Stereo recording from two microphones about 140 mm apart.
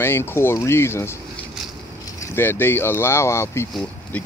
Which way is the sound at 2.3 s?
15° left (ahead or behind).